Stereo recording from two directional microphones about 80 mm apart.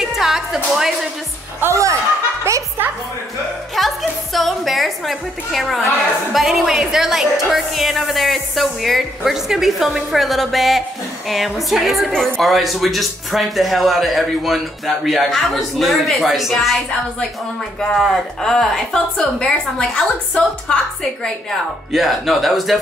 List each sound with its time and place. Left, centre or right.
0.0 s a woman's voice: centre
1.6 s a woman's voice: right
3.7 s music: centre
6.3 s a woman's voice: centre